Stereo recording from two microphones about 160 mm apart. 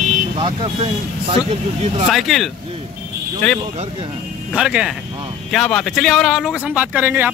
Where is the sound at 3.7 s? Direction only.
40° right (ahead or behind).